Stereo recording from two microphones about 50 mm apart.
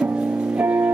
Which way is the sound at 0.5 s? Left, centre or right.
Right.